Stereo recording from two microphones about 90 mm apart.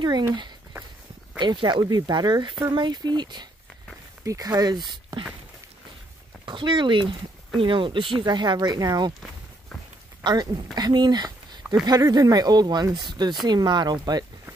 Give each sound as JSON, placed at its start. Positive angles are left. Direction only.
{"t": 1.4, "sound": "speech", "side_deg": -60}
{"t": 2.0, "sound": "speech", "side_deg": -50}
{"t": 4.2, "sound": "speech", "side_deg": -40}
{"t": 6.4, "sound": "speech", "side_deg": -60}
{"t": 10.2, "sound": "speech", "side_deg": -55}